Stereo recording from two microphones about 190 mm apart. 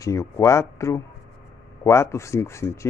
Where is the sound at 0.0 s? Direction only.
15° left (ahead or behind).